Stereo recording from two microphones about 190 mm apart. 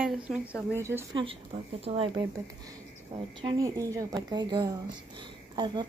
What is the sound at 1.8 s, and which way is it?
Speech, 30° right (ahead or behind).